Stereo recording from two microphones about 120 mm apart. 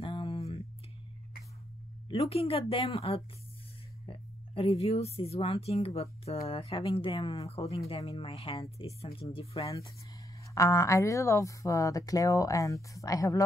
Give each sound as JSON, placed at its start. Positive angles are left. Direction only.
{"t": 0.0, "sound": "a sound", "side_deg": 45}
{"t": 2.0, "sound": "speech", "side_deg": 55}
{"t": 7.4, "sound": "speech", "side_deg": 60}
{"t": 10.5, "sound": "speech", "side_deg": 25}